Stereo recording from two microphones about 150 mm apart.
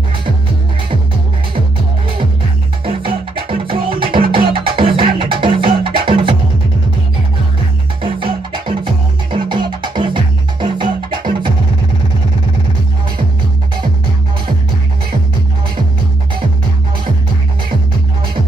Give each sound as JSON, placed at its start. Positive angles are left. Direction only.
{"t": 2.8, "sound": "music", "side_deg": -35}
{"t": 8.0, "sound": "music", "side_deg": -35}